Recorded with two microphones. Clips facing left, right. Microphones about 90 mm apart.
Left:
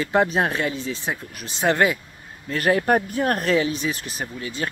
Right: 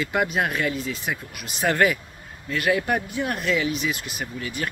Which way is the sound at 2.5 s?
35° left (ahead or behind).